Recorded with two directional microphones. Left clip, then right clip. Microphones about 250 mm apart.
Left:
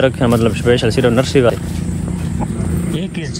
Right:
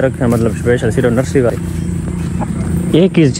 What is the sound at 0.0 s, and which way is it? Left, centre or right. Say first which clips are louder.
Speech: left 1 dB; centre.